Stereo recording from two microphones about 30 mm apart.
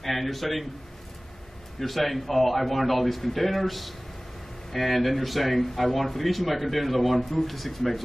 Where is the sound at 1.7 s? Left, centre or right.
Centre.